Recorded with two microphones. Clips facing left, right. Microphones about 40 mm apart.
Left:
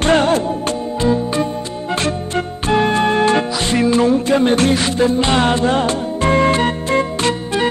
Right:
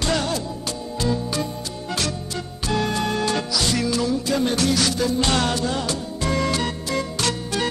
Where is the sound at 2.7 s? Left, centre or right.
Left.